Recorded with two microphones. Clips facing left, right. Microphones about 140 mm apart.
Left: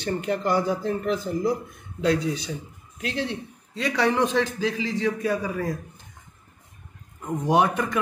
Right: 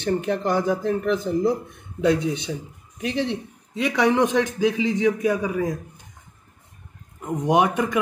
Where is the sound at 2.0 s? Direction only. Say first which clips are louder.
Right 3 dB; 20° right (ahead or behind).